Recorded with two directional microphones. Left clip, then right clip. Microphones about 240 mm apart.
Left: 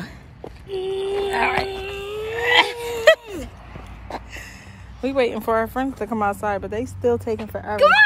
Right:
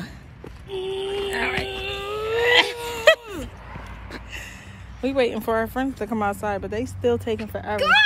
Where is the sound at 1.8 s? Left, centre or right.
Centre.